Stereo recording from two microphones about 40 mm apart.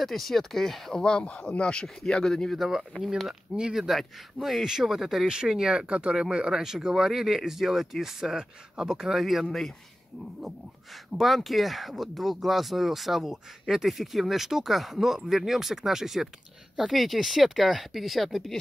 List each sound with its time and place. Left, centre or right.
0.0 s speech: centre
0.9 s speech: left
2.5 s speech: centre
4.6 s speech: centre
5.3 s speech: centre
5.9 s speech: right; by 9.6 s centre
11.1 s speech: centre